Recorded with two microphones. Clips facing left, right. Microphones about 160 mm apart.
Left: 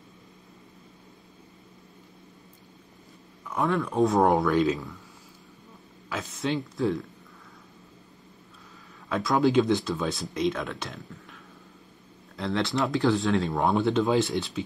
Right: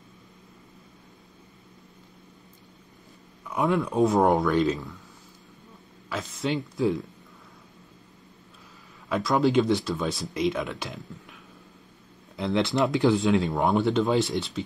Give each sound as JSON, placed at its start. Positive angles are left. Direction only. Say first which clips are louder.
{"t": 3.6, "sound": "speech", "louder": "right 2 dB", "side_deg": -15}
{"t": 4.0, "sound": "speech", "louder": "even", "side_deg": 0}
{"t": 6.0, "sound": "speech", "louder": "right 1 dB", "side_deg": 0}
{"t": 9.1, "sound": "speech", "louder": "even", "side_deg": 0}
{"t": 12.4, "sound": "speech", "louder": "right 3 dB", "side_deg": -20}
{"t": 13.4, "sound": "speech", "louder": "right 1 dB", "side_deg": 0}